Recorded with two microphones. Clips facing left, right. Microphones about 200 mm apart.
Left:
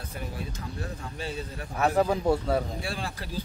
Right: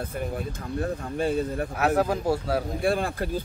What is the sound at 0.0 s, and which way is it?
Speech, 50° right (ahead or behind).